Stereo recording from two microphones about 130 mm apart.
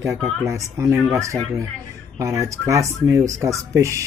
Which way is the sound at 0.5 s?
25° right (ahead or behind).